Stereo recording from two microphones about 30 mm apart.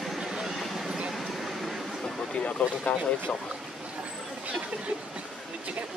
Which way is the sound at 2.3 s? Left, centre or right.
Left.